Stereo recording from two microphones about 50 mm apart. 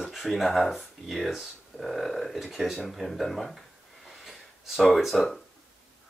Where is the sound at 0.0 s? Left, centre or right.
Centre.